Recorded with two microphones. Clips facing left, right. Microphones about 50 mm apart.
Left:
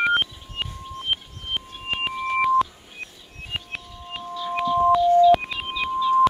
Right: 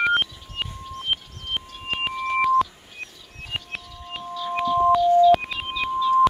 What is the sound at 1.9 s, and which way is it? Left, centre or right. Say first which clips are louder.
Music: even; centre.